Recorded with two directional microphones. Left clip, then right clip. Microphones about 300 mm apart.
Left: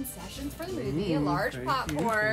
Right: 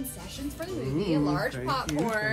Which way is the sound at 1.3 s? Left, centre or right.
Centre.